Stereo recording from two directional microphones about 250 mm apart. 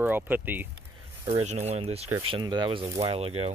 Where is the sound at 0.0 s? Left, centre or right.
Centre.